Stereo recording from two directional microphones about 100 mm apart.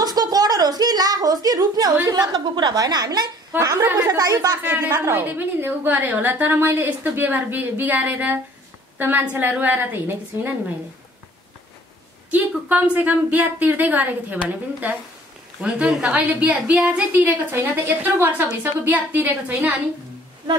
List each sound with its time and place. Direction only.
0.0 s a woman's voice: 40° right (ahead or behind)
3.5 s a woman's voice: 20° right (ahead or behind)
4.2 s speech: 40° right (ahead or behind)
5.1 s a woman's voice: 20° right (ahead or behind)
12.3 s a woman's voice: 15° right (ahead or behind)